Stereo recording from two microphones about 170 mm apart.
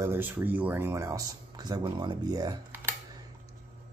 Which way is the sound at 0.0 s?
15° right (ahead or behind).